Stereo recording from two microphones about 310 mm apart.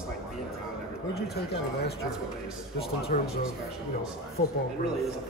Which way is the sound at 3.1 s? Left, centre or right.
Left.